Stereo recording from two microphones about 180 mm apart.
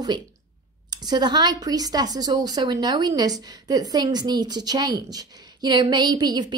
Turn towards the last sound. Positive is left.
turn(degrees=-20)  # may be behind; listen again after turning